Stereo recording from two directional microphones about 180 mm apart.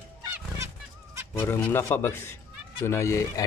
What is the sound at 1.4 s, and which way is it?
Speech, 10° left (ahead or behind).